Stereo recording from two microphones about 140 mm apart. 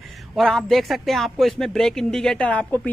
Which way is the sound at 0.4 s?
5° left (ahead or behind).